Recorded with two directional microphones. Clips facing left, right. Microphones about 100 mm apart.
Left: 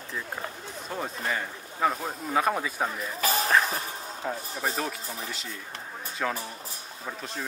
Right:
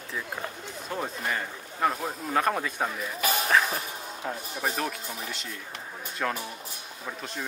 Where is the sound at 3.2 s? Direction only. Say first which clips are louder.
Left 1 dB; 35° left (ahead or behind).